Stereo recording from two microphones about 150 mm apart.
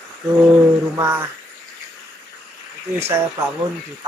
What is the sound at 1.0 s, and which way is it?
Speech, 15° right (ahead or behind).